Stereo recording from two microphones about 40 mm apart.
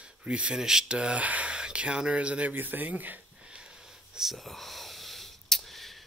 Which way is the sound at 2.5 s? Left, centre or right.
Right.